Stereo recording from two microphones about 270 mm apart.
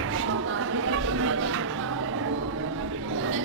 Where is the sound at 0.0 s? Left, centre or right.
Right.